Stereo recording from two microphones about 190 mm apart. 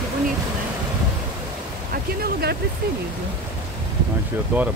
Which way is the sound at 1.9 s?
55° right (ahead or behind).